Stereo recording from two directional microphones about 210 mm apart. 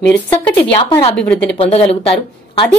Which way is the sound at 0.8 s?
20° left (ahead or behind).